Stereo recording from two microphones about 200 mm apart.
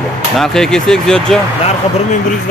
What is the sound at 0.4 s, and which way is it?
Speech, centre (ahead or behind).